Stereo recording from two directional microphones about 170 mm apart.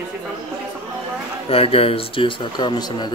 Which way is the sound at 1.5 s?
35° left (ahead or behind).